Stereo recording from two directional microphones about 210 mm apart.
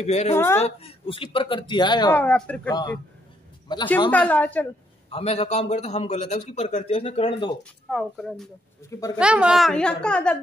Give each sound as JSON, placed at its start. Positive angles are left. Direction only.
{"t": 0.0, "sound": "speech", "side_deg": 30}
{"t": 2.1, "sound": "speech", "side_deg": 5}
{"t": 2.7, "sound": "a man's voice", "side_deg": 20}
{"t": 4.3, "sound": "speech", "side_deg": 10}
{"t": 5.1, "sound": "a man's voice", "side_deg": 30}
{"t": 7.9, "sound": "a woman's voice", "side_deg": 0}